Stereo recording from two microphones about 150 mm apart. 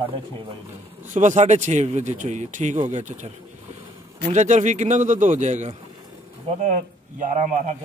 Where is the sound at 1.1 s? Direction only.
55° right (ahead or behind).